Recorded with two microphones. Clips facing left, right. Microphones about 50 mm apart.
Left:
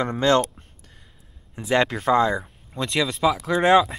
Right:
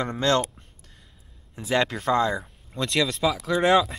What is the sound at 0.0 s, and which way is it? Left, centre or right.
Speech, centre.